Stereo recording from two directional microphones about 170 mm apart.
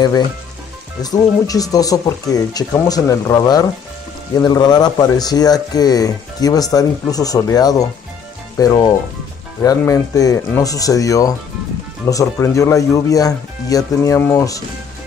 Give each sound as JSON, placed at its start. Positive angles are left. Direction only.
{"t": 1.0, "sound": "speech", "side_deg": 20}